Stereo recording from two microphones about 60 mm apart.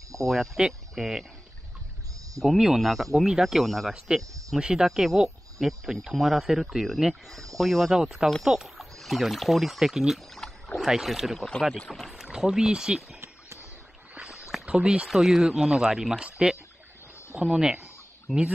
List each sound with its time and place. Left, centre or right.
0.1 s speech: centre
2.4 s speech: centre
4.6 s speech: centre
10.4 s rowboat: centre
10.9 s speech: centre
14.1 s a sound: centre
14.7 s speech: centre
15.0 s speech: centre
18.3 s speech: centre